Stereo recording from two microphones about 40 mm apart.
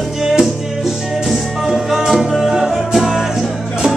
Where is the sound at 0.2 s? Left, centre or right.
Centre.